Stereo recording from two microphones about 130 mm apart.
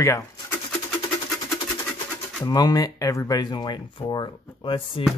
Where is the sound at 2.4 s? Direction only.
30° left (ahead or behind).